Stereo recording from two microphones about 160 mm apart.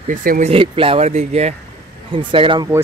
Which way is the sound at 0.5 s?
35° right (ahead or behind).